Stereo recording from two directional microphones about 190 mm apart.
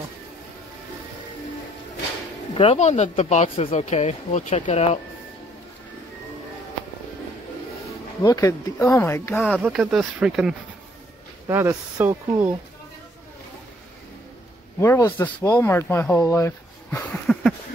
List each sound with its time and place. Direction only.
2.5 s speech: 30° left (ahead or behind)
8.2 s speech: 20° left (ahead or behind)
9.6 s speech: 5° right (ahead or behind)
11.4 s speech: 15° right (ahead or behind)
14.8 s speech: 10° left (ahead or behind)